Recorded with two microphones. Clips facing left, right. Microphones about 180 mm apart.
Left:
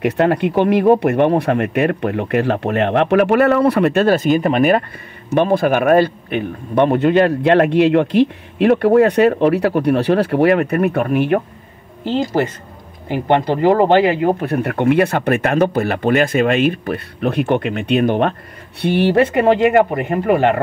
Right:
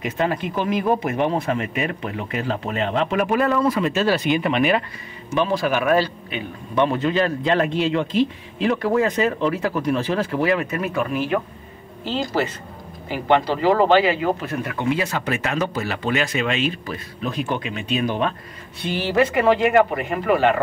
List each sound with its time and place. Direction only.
0.0 s speech: 65° left (ahead or behind)
13.5 s speech: 50° left (ahead or behind)
19.9 s speech: 45° left (ahead or behind)